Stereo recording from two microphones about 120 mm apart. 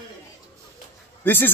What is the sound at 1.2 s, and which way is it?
Speech, 15° left (ahead or behind).